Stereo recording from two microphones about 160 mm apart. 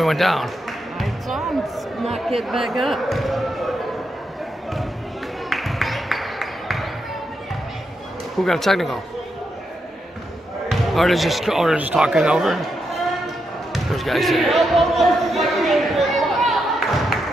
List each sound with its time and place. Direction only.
0.0 s speech: centre (ahead or behind)
5.5 s music: centre (ahead or behind)
8.4 s speech: centre (ahead or behind)
10.7 s speech: centre (ahead or behind)
13.9 s a sound: centre (ahead or behind)